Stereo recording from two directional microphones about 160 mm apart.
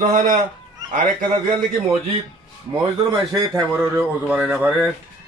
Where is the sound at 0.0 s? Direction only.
50° right (ahead or behind).